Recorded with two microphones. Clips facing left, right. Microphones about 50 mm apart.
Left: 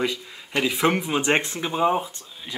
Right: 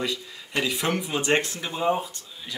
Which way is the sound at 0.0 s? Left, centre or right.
Left.